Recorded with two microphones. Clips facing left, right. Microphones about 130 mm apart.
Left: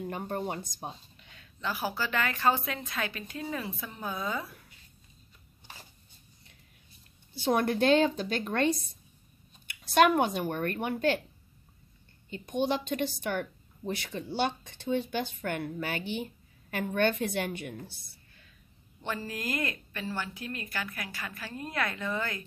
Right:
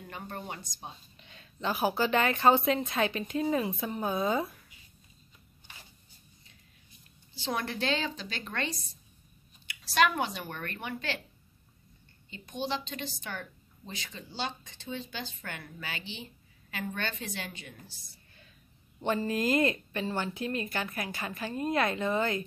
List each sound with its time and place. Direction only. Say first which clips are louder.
0.1 s a woman's voice: left 3 dB; 40° left (ahead or behind)
1.1 s speech: right 2 dB; 25° right (ahead or behind)
7.3 s a woman's voice: left 7 dB; 55° left (ahead or behind)
9.9 s a woman's voice: left 4 dB; 50° left (ahead or behind)
12.3 s a woman's voice: left 5 dB; 50° left (ahead or behind)
18.9 s speech: right 7 dB; 25° right (ahead or behind)